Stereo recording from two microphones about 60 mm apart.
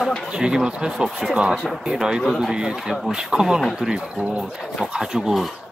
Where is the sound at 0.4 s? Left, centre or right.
Centre.